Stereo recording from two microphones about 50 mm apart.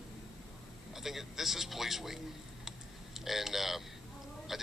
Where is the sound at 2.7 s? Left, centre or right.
Centre.